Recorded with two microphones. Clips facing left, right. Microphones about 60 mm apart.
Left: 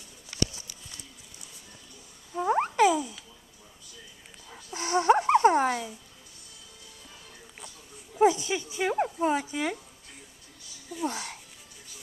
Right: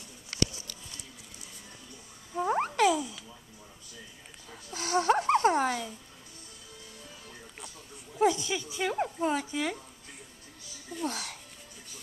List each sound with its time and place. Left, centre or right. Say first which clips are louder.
2.3 s a sound: left 3 dB; centre
4.5 s dog: left 2 dB; centre
8.2 s speech: left 4 dB; centre
11.0 s speech: left 2 dB; centre